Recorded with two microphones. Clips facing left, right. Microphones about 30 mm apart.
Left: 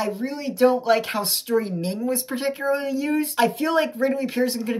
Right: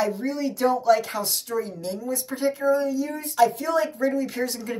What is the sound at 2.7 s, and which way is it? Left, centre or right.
Speech, left.